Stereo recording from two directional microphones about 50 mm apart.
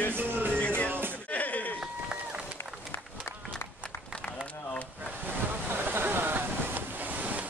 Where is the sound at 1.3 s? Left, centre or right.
Left.